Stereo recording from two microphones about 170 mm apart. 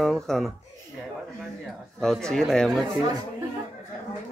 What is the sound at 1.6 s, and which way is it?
A man's voice, 5° left (ahead or behind).